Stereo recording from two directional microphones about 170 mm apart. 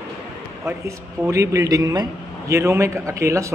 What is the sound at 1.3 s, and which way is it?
A man's voice, 20° right (ahead or behind).